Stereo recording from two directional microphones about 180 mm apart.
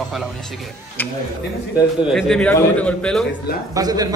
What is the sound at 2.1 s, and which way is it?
A man's voice, centre (ahead or behind).